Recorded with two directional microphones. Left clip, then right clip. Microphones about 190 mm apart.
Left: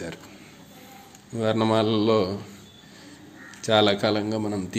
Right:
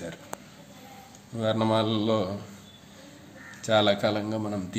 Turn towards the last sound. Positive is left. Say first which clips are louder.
# left 3 dB
turn(degrees=15)  # may be behind; listen again after turning